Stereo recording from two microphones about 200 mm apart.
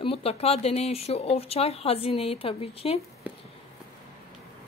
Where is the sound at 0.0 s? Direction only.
30° left (ahead or behind).